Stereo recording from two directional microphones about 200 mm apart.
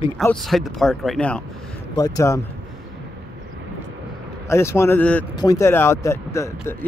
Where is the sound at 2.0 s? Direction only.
15° left (ahead or behind).